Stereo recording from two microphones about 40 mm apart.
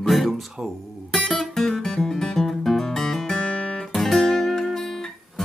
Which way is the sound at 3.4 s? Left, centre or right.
Left.